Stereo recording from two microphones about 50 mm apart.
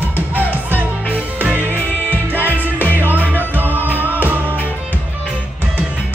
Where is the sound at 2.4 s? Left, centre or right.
Right.